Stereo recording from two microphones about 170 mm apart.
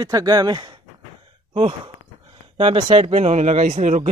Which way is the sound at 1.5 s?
35° right (ahead or behind).